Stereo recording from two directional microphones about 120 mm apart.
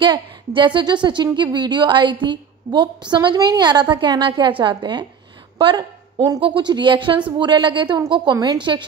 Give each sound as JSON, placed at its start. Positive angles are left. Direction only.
{"t": 0.6, "sound": "a woman's voice", "side_deg": -40}